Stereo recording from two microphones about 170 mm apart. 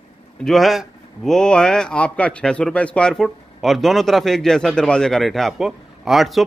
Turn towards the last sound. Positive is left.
turn(degrees=0)  # may be behind; listen again after turning